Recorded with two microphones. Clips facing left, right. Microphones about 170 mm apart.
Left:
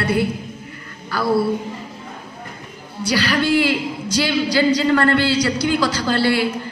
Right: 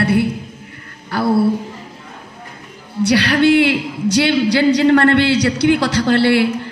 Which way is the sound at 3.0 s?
65° right (ahead or behind).